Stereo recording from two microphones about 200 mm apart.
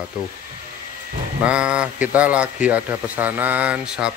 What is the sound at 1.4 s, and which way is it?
A man's voice, 5° right (ahead or behind).